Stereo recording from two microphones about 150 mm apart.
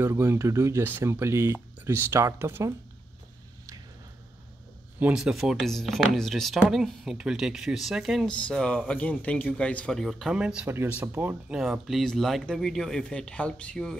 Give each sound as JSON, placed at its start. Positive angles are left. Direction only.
{"t": 0.0, "sound": "speech", "side_deg": -15}
{"t": 5.0, "sound": "speech", "side_deg": -5}